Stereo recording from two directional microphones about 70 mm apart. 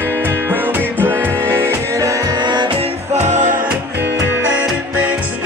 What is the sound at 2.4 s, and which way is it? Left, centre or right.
Music, right.